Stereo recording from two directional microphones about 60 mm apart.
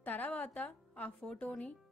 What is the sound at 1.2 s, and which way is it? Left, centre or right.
Speech, centre.